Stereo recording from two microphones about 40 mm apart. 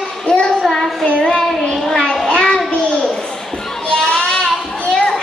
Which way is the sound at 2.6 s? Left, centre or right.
Left.